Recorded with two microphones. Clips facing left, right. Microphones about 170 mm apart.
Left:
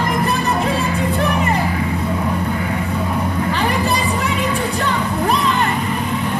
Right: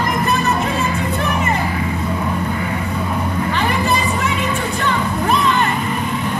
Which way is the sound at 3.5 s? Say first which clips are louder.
Right 2 dB; 35° left (ahead or behind).